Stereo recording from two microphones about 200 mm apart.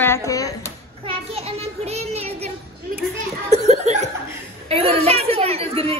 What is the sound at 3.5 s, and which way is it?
Chuckle, 35° right (ahead or behind).